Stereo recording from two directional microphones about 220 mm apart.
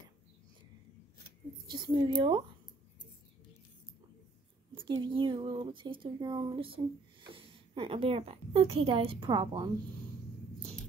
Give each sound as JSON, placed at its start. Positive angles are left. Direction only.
{"t": 1.7, "sound": "a woman's voice", "side_deg": -20}
{"t": 4.7, "sound": "a woman's voice", "side_deg": -20}